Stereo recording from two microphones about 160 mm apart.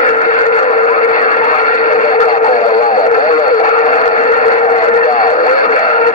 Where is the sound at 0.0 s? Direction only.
50° left (ahead or behind).